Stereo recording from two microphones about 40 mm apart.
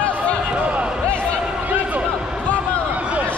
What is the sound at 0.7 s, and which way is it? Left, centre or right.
Basketball bounce, right.